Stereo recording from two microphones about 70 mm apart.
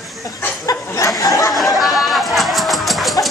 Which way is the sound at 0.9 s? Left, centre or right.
Left.